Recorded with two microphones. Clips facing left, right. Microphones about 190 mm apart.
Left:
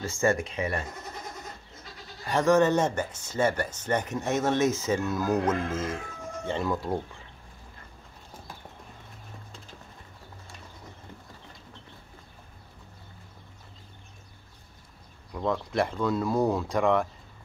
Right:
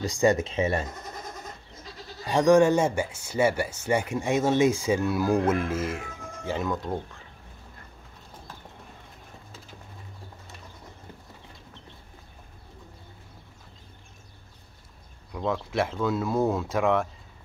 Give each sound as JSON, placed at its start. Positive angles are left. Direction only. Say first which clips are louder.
{"t": 0.0, "sound": "speech", "louder": "right 3 dB", "side_deg": -15}
{"t": 2.2, "sound": "speech", "louder": "right 3 dB", "side_deg": -15}
{"t": 15.3, "sound": "speech", "louder": "even", "side_deg": 0}